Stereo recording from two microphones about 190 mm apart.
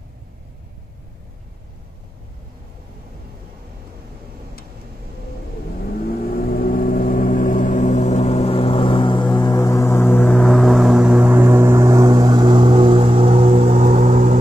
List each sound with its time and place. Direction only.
5.9 s vehicle: 50° left (ahead or behind); by 14.4 s 40° right (ahead or behind)